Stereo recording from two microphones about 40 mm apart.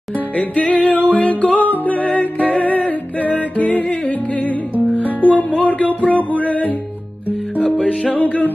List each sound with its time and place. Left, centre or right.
0.4 s music: left
7.6 s music: left
8.1 s music: left